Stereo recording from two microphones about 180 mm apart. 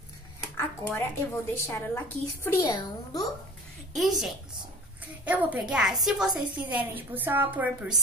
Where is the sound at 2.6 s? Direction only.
25° left (ahead or behind).